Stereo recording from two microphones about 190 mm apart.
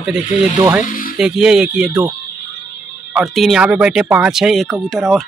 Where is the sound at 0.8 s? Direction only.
45° left (ahead or behind).